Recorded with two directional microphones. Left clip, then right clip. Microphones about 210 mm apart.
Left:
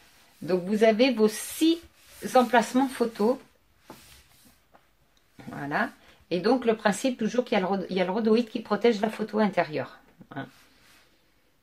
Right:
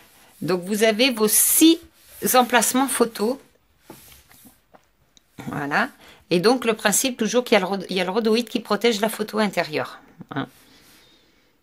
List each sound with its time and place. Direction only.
0.5 s speech: 50° right (ahead or behind)
1.8 s a sound: centre (ahead or behind)
2.2 s speech: 45° right (ahead or behind)
5.4 s speech: 45° right (ahead or behind)